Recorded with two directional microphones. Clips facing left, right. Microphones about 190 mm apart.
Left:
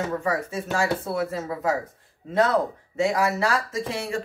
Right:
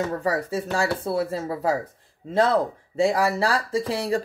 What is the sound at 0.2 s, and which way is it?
Speech, 35° right (ahead or behind).